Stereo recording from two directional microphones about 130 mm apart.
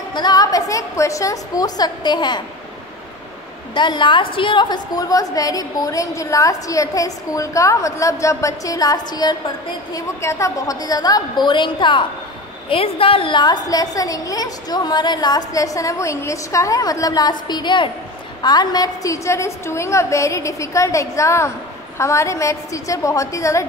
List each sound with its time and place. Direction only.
0.1 s a woman's voice: 35° left (ahead or behind)
3.7 s a woman's voice: 35° left (ahead or behind)